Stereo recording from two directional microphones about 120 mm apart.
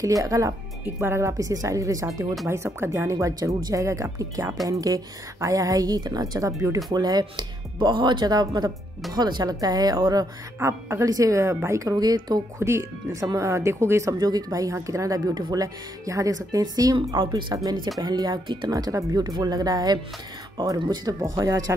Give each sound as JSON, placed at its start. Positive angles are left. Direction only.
{"t": 0.0, "sound": "a woman's voice", "side_deg": -30}
{"t": 10.6, "sound": "a woman's voice", "side_deg": -25}